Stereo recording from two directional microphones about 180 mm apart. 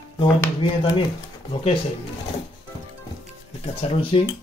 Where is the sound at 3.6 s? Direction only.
30° left (ahead or behind).